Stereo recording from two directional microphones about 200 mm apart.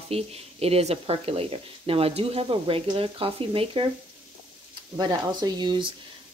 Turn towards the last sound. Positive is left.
turn(degrees=-20)  # may be behind; listen again after turning